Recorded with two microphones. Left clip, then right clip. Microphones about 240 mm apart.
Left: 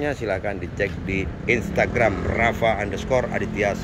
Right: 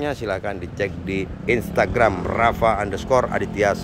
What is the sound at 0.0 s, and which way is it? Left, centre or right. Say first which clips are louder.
Speech: even; centre.